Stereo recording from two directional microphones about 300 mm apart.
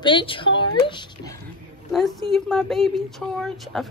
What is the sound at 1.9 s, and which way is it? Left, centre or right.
Speech, centre.